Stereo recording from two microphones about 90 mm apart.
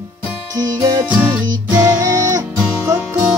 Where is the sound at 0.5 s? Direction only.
50° right (ahead or behind).